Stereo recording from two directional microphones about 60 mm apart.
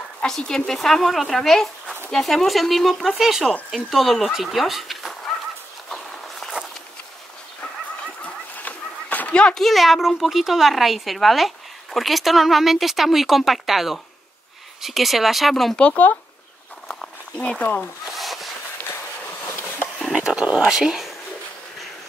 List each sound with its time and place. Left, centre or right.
0.3 s a child's voice: centre
5.9 s walk: centre
8.5 s a sound: left
9.3 s a sound: centre
9.6 s a child's voice: centre
15.8 s speech: left
17.4 s speech: left
18.1 s a sound: centre
20.2 s speech: centre